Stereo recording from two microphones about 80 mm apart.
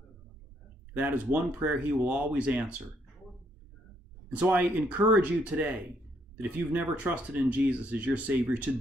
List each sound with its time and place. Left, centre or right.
0.9 s speech: right
4.3 s speech: centre